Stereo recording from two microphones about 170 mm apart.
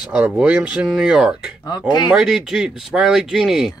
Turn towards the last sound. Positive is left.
turn(degrees=0)  # may be behind; listen again after turning